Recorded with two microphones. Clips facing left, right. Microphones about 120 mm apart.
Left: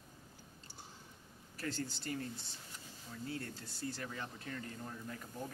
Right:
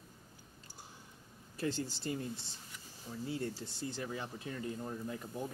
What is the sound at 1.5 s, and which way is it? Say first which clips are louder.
Speech: right 4 dB; 20° right (ahead or behind).